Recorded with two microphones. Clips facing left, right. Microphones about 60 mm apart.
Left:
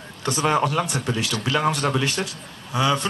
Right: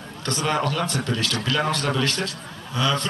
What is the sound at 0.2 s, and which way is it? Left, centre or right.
A man's voice, centre.